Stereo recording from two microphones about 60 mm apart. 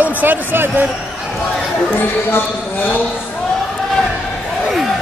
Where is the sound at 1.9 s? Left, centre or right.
Left.